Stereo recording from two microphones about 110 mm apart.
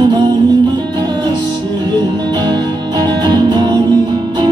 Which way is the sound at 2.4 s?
40° right (ahead or behind).